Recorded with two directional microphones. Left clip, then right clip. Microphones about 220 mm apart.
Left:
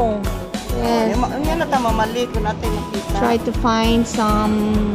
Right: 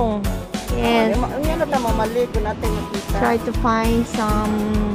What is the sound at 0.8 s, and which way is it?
Music, 5° right (ahead or behind).